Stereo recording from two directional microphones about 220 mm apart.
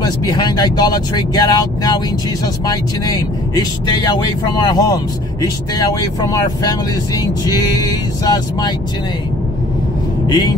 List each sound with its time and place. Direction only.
0.0 s speech: 20° left (ahead or behind)
10.2 s speech: 20° left (ahead or behind)